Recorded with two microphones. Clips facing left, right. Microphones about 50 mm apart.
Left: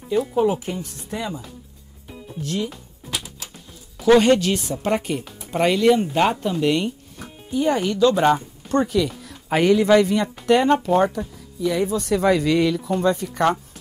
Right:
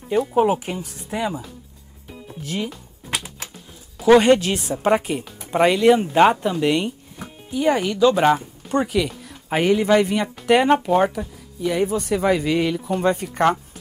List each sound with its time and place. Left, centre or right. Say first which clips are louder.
0.3 s speech: right 2 dB; right
2.4 s speech: left 1 dB; centre
3.1 s typewriter: right 2 dB; right
4.0 s speech: right 1 dB; centre
11.6 s speech: even; right
12.0 s speech: left 1 dB; centre
13.0 s speech: right 1 dB; right